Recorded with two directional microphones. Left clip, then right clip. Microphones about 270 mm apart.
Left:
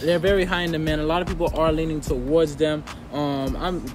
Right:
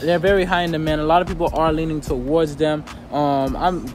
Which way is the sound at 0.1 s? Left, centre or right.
Centre.